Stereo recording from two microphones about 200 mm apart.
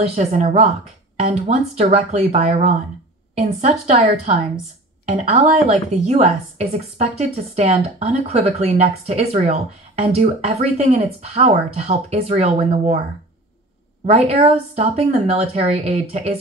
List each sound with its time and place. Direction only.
0.1 s a woman's voice: 35° right (ahead or behind)
1.8 s a woman's voice: 35° right (ahead or behind)
14.0 s a woman's voice: 30° right (ahead or behind)